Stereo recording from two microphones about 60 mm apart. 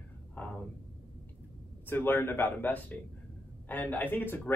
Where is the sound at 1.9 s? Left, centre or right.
Left.